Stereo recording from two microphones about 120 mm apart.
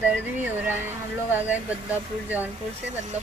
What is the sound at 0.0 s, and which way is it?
Speech, 15° right (ahead or behind).